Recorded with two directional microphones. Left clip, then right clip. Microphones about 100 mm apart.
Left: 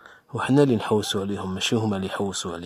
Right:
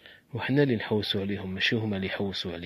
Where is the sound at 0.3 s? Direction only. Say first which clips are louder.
Left 6 dB; 25° left (ahead or behind).